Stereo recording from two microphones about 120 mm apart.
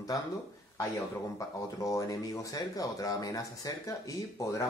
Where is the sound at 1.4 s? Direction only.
30° left (ahead or behind).